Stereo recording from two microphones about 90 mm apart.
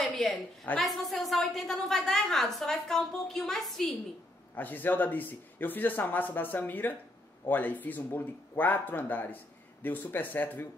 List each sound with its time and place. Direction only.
0.1 s a sound: centre (ahead or behind)
0.7 s a woman's voice: centre (ahead or behind)
4.6 s speech: 20° left (ahead or behind)